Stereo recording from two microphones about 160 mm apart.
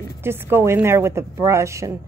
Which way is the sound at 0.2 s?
15° right (ahead or behind).